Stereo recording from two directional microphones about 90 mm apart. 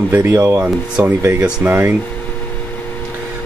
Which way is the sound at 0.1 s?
25° right (ahead or behind).